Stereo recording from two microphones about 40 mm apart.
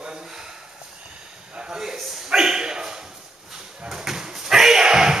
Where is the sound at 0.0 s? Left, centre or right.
Centre.